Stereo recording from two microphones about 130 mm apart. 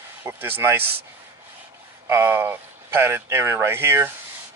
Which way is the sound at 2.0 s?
20° right (ahead or behind).